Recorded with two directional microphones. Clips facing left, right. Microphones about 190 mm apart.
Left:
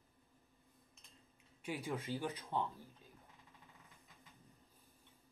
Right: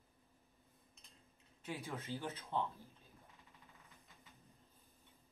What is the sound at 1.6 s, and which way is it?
Speech, 15° left (ahead or behind).